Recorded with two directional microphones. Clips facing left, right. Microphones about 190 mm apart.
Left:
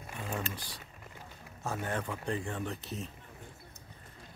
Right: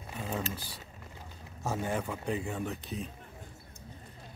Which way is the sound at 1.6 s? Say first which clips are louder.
Right 3 dB; 15° right (ahead or behind).